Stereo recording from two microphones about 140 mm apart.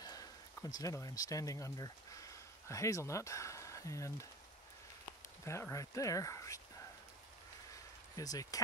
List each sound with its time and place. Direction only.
0.0 s speech: 25° left (ahead or behind)
5.4 s speech: 20° left (ahead or behind)
8.2 s speech: 25° left (ahead or behind)